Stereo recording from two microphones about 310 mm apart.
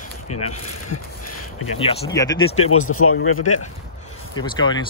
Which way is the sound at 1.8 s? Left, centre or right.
Centre.